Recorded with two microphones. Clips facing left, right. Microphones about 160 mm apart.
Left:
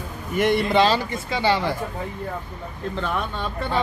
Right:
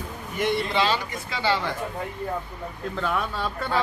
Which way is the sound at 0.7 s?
40° left (ahead or behind).